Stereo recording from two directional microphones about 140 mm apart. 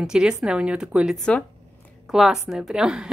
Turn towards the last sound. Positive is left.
turn(degrees=-5)  # may be behind; listen again after turning